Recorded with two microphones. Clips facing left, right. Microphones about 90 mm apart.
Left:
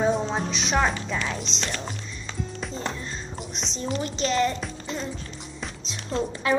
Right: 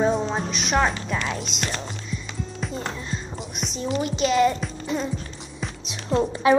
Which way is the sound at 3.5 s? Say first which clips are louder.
Right 4 dB; 5° right (ahead or behind).